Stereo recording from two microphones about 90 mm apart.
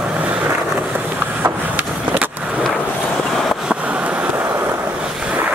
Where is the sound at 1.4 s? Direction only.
20° right (ahead or behind).